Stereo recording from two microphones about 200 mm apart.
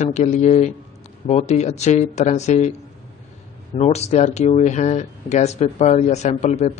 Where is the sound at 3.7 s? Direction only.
30° left (ahead or behind).